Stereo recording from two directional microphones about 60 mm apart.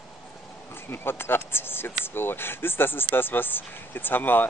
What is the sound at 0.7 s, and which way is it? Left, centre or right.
Speech, left.